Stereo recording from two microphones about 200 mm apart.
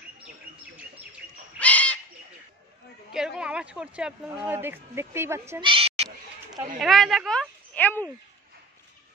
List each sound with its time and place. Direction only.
1.6 s bird: 5° left (ahead or behind)
3.1 s speech: 5° right (ahead or behind)
5.6 s a sound: 25° right (ahead or behind)
6.8 s speech: centre (ahead or behind)